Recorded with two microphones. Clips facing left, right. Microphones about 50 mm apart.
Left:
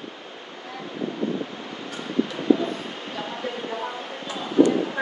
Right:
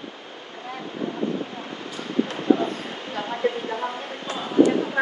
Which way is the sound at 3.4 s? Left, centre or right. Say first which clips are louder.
Right 9 dB; right.